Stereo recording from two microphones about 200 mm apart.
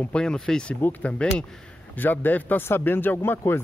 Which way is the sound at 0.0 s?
5° left (ahead or behind).